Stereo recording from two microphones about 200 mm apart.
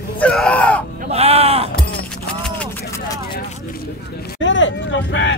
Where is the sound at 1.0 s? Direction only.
30° right (ahead or behind).